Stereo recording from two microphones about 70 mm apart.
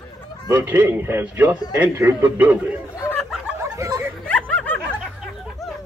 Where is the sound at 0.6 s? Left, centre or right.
Right.